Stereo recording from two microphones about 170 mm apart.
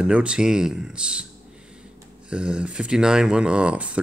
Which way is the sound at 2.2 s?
5° right (ahead or behind).